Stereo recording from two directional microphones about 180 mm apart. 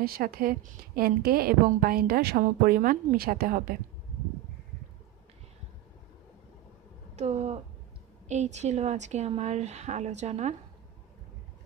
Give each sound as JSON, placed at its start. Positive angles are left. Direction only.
{"t": 0.0, "sound": "a woman's voice", "side_deg": -55}
{"t": 7.2, "sound": "a woman's voice", "side_deg": -40}